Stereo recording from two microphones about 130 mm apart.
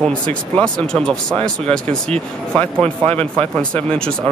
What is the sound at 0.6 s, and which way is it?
Speech, 5° left (ahead or behind).